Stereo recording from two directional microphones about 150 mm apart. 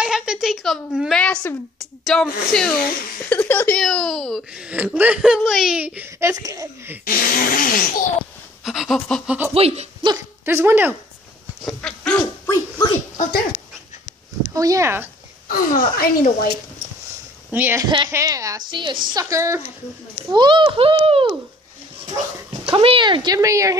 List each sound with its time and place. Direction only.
0.0 s a woman's voice: 5° right (ahead or behind)
3.3 s speech: 15° left (ahead or behind); by 7.0 s 20° right (ahead or behind)
7.1 s speech: 70° left (ahead or behind)
8.6 s speech: centre (ahead or behind)
9.5 s a child's voice: 40° right (ahead or behind)
10.4 s speech: 15° right (ahead or behind)
11.6 s dog: 5° left (ahead or behind)
13.2 s speech: 80° left
14.5 s speech: 25° right (ahead or behind)
15.4 s speech: 65° left (ahead or behind)
17.5 s speech: 15° right (ahead or behind)
17.8 s a child's voice: 30° right (ahead or behind)
20.3 s a child's voice: 30° right (ahead or behind)
22.7 s speech: 35° right (ahead or behind); by 23.8 s 20° right (ahead or behind)